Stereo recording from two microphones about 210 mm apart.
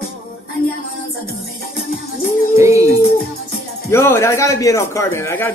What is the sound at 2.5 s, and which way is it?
Music, 15° right (ahead or behind).